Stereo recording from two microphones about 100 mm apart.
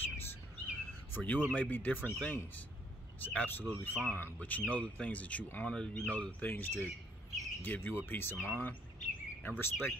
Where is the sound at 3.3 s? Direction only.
20° left (ahead or behind).